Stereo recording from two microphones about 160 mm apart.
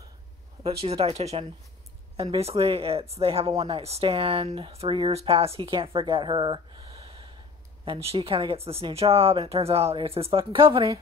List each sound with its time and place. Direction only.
0.7 s speech: 35° right (ahead or behind)